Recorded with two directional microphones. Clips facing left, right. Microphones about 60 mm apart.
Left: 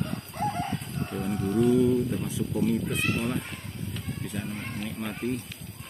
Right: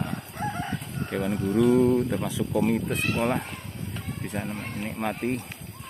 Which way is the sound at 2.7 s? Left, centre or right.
Right.